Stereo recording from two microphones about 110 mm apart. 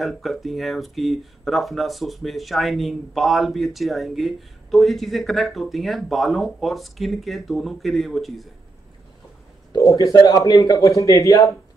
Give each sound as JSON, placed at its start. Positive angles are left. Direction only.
{"t": 0.0, "sound": "speech", "side_deg": 0}
{"t": 9.7, "sound": "speech", "side_deg": 30}